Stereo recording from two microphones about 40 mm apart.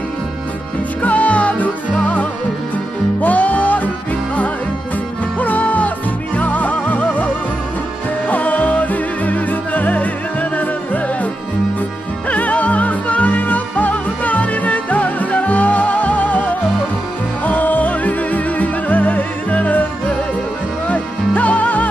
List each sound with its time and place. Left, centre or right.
1.0 s music: left
3.2 s music: left
5.4 s music: left
8.3 s music: left
12.3 s music: left